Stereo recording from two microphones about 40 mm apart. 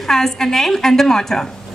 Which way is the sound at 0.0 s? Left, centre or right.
Centre.